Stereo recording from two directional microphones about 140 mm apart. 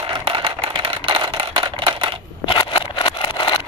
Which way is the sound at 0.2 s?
40° right (ahead or behind).